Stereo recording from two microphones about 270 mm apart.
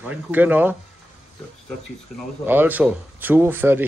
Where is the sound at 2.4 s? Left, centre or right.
Centre.